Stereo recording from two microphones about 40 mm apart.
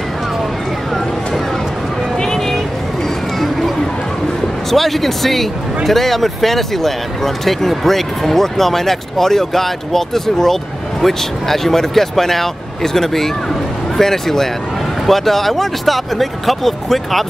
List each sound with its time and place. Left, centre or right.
2.1 s vehicle: centre
3.3 s a sound: centre
4.6 s speech: centre